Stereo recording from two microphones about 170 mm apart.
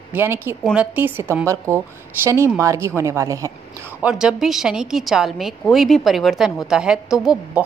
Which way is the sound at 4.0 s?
5° right (ahead or behind).